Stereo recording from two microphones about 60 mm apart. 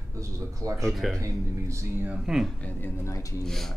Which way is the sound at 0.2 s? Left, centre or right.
Right.